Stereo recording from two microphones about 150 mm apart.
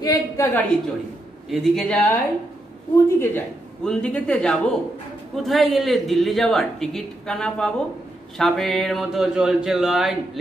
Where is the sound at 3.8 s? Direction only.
5° left (ahead or behind).